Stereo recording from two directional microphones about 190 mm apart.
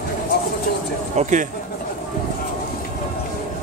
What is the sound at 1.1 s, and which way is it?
Speech, 40° right (ahead or behind).